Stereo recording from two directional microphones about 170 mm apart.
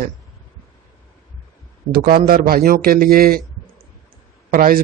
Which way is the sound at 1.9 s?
60° right (ahead or behind).